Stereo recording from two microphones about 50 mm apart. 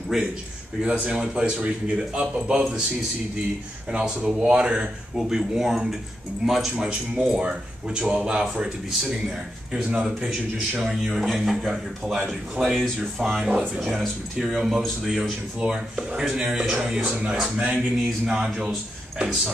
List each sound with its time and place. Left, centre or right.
0.1 s speech: centre
0.8 s speech: centre
3.9 s speech: right
5.1 s speech: centre
9.9 s speech: centre
10.9 s a man's voice: centre